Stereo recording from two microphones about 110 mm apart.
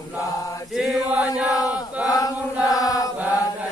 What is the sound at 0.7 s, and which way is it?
Chant, centre (ahead or behind).